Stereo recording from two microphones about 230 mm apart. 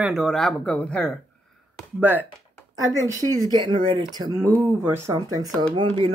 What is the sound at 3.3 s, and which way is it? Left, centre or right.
Speech, centre.